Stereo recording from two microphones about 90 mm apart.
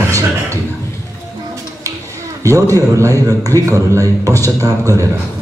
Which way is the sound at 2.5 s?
35° right (ahead or behind).